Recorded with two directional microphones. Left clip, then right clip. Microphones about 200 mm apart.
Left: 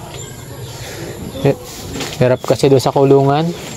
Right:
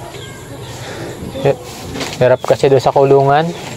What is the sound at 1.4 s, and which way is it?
Speech, 50° left (ahead or behind).